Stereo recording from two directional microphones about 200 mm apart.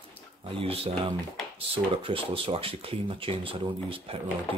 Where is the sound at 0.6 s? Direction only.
30° right (ahead or behind).